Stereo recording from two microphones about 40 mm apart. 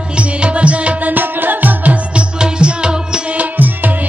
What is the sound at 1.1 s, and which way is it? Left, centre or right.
Music, right.